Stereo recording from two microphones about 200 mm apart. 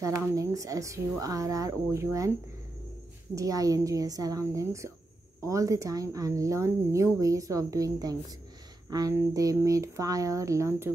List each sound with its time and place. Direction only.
0.0 s speech: 15° right (ahead or behind)
3.3 s speech: 15° right (ahead or behind)